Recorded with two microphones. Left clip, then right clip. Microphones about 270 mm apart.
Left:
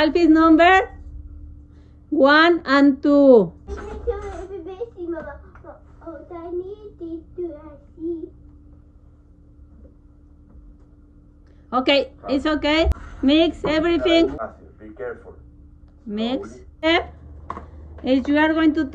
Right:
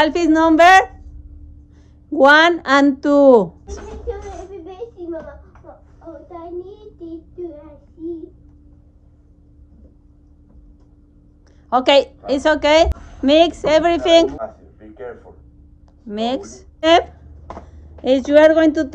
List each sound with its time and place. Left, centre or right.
0.0 s a woman's voice: centre
2.1 s a sound: centre
7.3 s child singing: centre
11.7 s a woman's voice: centre
14.3 s a sound: centre
16.1 s speech: centre
18.0 s a woman's voice: centre